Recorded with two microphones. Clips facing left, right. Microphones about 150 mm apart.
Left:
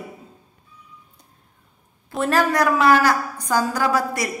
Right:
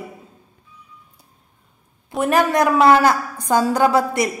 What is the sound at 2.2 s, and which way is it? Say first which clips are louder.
A woman's voice: right 2 dB; 20° right (ahead or behind).